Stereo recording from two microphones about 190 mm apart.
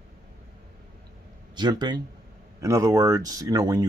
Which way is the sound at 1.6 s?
20° right (ahead or behind).